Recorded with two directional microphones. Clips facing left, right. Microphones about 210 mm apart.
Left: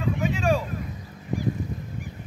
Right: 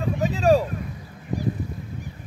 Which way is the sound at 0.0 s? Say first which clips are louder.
Right 3 dB; 40° right (ahead or behind).